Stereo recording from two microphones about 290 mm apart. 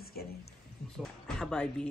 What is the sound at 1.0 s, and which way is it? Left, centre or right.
Speech, centre.